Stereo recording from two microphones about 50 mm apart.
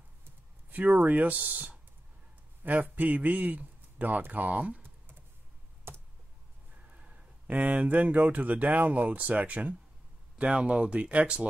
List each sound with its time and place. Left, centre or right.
0.2 s computer keyboard: right
2.6 s a man's voice: right
5.9 s a sound: right
6.9 s speech: right